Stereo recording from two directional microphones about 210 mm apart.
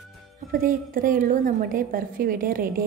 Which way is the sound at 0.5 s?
40° right (ahead or behind).